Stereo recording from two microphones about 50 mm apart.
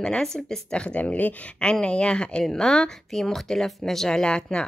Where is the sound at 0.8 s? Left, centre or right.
Left.